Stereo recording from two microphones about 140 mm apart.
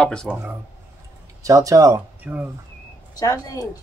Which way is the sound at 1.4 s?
25° right (ahead or behind).